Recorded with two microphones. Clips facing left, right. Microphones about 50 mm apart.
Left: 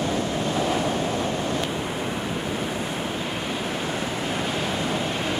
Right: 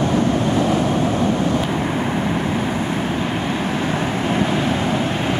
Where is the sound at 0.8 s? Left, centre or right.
Right.